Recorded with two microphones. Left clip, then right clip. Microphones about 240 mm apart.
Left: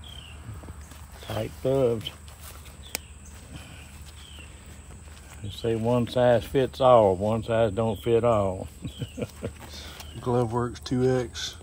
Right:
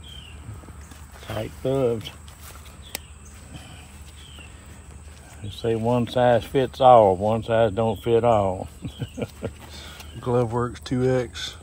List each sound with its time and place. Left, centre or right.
1.2 s speech: centre
5.5 s speech: centre
9.9 s speech: centre